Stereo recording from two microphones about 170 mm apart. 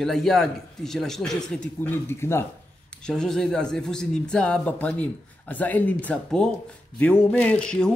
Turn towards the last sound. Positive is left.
turn(degrees=5)  # may be behind; listen again after turning